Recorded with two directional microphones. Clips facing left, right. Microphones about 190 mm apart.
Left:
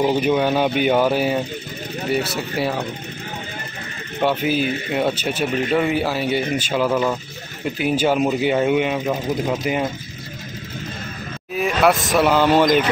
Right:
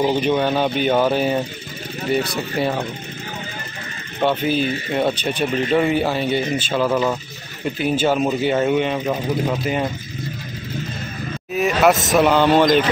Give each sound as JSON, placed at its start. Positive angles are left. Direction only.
{"t": 0.0, "sound": "speech", "side_deg": 5}
{"t": 4.2, "sound": "speech", "side_deg": 10}
{"t": 6.9, "sound": "speech", "side_deg": -5}
{"t": 7.8, "sound": "speech", "side_deg": 10}
{"t": 11.5, "sound": "speech", "side_deg": 0}